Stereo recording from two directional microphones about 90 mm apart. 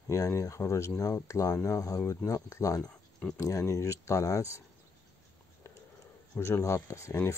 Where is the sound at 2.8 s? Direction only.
10° left (ahead or behind).